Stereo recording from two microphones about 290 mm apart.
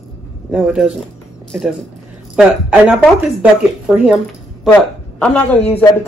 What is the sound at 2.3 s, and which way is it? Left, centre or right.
Speech, centre.